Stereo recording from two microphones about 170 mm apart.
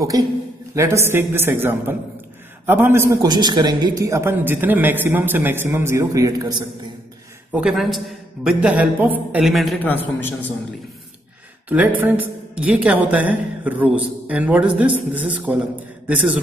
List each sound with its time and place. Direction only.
0.1 s a man's voice: 20° right (ahead or behind)
7.5 s a man's voice: 5° right (ahead or behind)
9.8 s a man's voice: 10° left (ahead or behind)
12.0 s a woman's voice: 10° right (ahead or behind)